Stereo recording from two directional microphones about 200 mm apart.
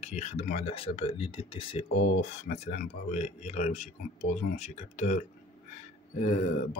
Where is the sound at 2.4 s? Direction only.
45° left (ahead or behind).